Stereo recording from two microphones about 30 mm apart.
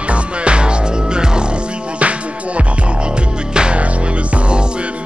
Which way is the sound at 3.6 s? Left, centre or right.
Right.